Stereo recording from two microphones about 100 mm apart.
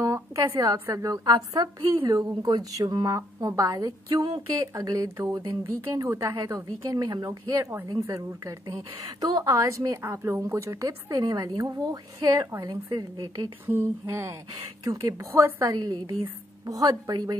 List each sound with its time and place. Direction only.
0.0 s a sound: 35° right (ahead or behind)
0.7 s speech: 30° right (ahead or behind)
13.7 s speech: 25° right (ahead or behind)